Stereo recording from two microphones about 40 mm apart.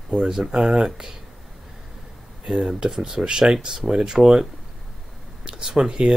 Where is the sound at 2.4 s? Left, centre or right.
Centre.